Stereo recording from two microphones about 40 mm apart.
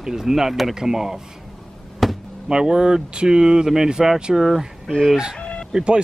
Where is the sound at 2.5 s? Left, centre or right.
Centre.